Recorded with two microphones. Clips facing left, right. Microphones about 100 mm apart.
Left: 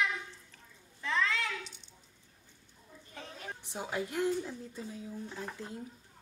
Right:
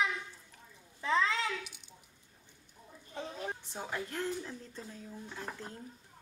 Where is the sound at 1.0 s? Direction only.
20° right (ahead or behind).